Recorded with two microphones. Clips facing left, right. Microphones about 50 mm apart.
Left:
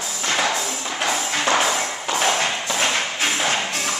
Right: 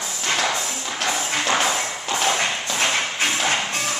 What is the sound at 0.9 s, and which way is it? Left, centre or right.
Music, centre.